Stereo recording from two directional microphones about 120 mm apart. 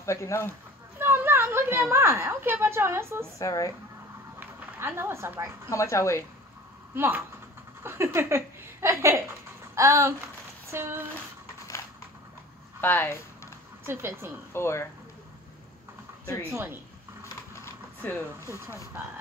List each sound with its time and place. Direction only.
0.0 s speech: 25° left (ahead or behind)
0.9 s a woman's voice: 20° right (ahead or behind)
3.3 s speech: 25° left (ahead or behind)
4.4 s speech: 20° right (ahead or behind)
5.7 s speech: 25° left (ahead or behind)
7.0 s a sound: 20° right (ahead or behind)
10.7 s speech: 20° right (ahead or behind)
12.8 s speech: 15° left (ahead or behind)
13.8 s a sound: 20° right (ahead or behind)
14.5 s speech: 20° left (ahead or behind)
16.4 s a sound: 20° right (ahead or behind)
18.4 s a sound: 20° right (ahead or behind)